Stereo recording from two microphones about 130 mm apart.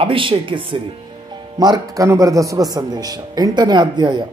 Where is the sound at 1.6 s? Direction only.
30° right (ahead or behind).